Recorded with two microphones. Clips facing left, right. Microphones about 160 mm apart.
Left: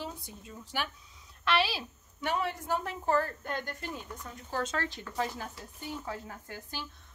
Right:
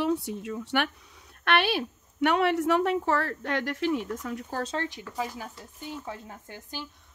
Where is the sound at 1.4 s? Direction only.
60° right (ahead or behind); by 4.4 s 80° right.